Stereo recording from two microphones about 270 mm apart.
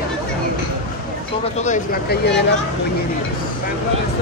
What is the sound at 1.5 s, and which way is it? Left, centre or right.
Speech, left.